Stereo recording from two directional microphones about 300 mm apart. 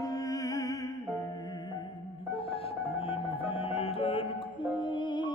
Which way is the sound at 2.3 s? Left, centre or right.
Centre.